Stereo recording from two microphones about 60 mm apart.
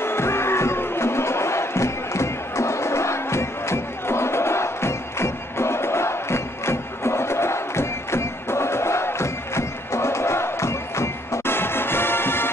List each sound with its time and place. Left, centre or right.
0.0 s music: left